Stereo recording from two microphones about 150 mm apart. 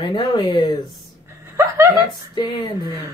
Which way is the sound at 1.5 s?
15° right (ahead or behind).